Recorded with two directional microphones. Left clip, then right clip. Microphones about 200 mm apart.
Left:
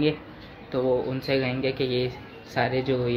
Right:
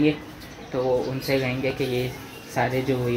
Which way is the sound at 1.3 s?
15° left (ahead or behind).